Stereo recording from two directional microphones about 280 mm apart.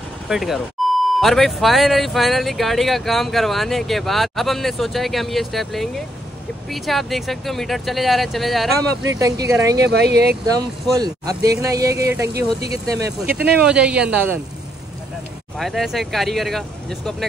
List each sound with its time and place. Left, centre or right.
0.3 s speech: centre
0.8 s beep: centre
1.2 s speech: centre
9.2 s speech: centre
9.8 s speech: right
10.4 s speech: centre
15.5 s speech: centre